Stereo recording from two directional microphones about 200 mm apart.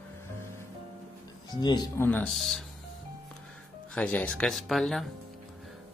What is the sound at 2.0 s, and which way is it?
Speech, 5° left (ahead or behind).